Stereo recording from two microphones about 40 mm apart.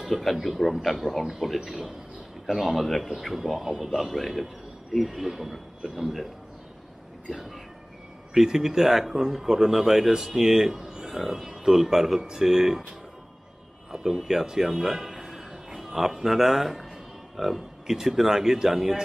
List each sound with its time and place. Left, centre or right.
0.0 s a man's voice: centre
8.4 s speech: centre
12.2 s speech: centre
12.4 s speech: centre
13.9 s speech: centre